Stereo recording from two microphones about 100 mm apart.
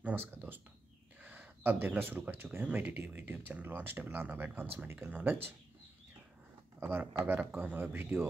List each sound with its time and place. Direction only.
0.0 s speech: 20° right (ahead or behind)
6.8 s speech: 20° right (ahead or behind)